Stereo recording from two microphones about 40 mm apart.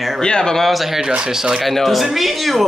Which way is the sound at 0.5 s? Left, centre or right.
Centre.